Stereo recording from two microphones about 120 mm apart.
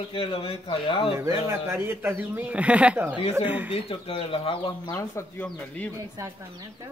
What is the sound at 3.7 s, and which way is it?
Speech, 55° left (ahead or behind).